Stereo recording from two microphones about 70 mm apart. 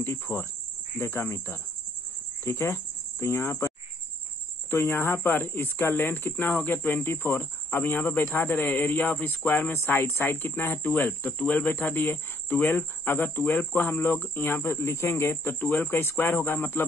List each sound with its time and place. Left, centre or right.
0.0 s cricket: left
2.4 s speech: left
4.6 s speech: left
10.6 s cricket: left
15.6 s cricket: left